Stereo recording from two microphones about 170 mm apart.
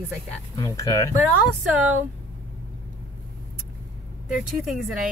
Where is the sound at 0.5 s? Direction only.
20° left (ahead or behind).